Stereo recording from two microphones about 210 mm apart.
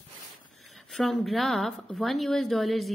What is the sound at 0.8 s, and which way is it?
A woman's voice, centre (ahead or behind).